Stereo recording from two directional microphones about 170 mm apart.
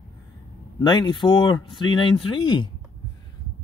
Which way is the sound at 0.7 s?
25° left (ahead or behind).